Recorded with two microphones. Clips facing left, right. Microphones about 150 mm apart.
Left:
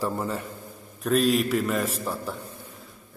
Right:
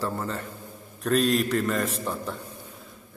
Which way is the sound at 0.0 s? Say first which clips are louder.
Left 2 dB; 10° left (ahead or behind).